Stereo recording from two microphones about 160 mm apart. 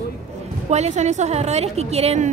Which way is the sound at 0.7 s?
45° right (ahead or behind).